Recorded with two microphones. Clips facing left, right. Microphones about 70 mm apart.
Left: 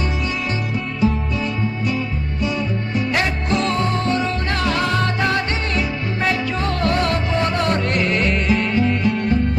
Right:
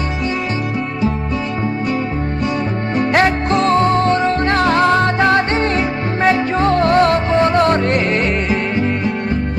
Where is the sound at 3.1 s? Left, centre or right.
Right.